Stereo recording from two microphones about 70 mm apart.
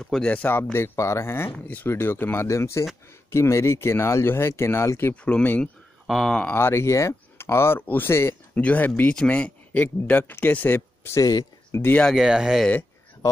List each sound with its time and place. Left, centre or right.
0.0 s speech: centre
0.7 s speech: left
2.4 s speech: left
5.1 s speech: centre
6.0 s speech: centre
6.5 s speech: left
8.1 s speech: left
8.5 s speech: left
11.1 s speech: left
11.7 s speech: left
12.2 s speech: centre